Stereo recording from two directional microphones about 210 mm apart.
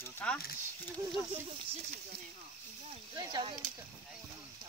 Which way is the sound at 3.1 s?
20° right (ahead or behind).